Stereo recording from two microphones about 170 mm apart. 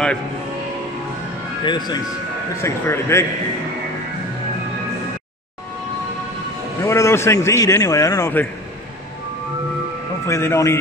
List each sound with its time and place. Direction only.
1.6 s a man's voice: 25° left (ahead or behind)
6.8 s a man's voice: 15° left (ahead or behind)
10.2 s a man's voice: 15° left (ahead or behind)